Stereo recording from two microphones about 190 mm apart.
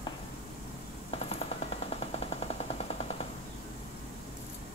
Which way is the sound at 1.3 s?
30° left (ahead or behind).